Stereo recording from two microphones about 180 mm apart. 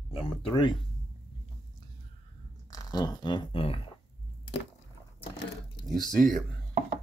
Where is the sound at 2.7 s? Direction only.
20° left (ahead or behind).